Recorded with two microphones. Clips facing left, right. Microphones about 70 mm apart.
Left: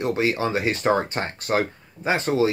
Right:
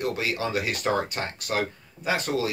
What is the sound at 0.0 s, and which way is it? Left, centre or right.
Speech, left.